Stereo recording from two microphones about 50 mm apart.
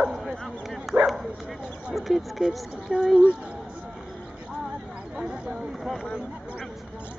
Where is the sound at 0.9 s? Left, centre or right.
Right.